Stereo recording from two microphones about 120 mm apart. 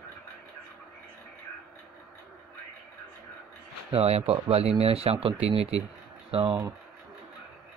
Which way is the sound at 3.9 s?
55° right (ahead or behind).